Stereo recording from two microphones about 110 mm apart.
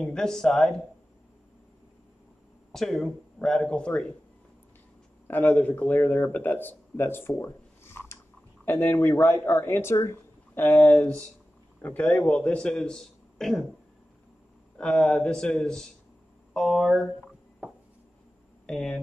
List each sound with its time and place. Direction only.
0.0 s a man's voice: 5° left (ahead or behind)
2.7 s a man's voice: centre (ahead or behind)
5.3 s a man's voice: 15° left (ahead or behind)
14.8 s a man's voice: 5° left (ahead or behind)
18.7 s a man's voice: 5° left (ahead or behind)